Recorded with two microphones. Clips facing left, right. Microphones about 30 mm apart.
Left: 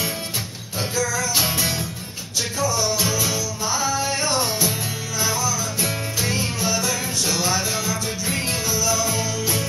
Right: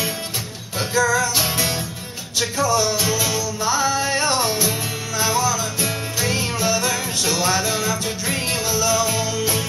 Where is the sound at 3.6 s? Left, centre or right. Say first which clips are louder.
Right 3 dB; right.